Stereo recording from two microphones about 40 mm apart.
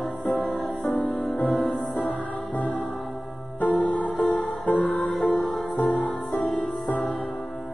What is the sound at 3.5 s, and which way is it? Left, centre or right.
Music, left.